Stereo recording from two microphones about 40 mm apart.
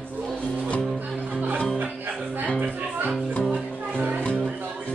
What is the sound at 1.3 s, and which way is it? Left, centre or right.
Music, right.